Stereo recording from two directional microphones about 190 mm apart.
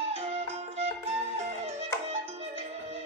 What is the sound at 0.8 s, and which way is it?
Music, 35° right (ahead or behind).